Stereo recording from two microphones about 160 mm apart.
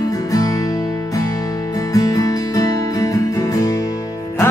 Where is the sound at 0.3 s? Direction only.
20° left (ahead or behind).